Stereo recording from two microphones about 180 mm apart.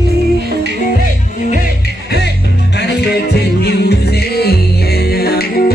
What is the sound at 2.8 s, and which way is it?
Music, 65° left (ahead or behind).